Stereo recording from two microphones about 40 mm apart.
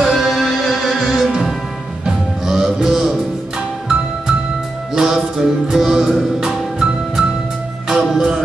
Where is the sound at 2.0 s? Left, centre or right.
Centre.